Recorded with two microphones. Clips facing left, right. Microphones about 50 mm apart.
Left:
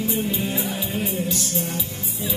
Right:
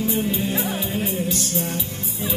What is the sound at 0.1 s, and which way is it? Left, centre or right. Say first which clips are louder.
Music: right 2 dB; right.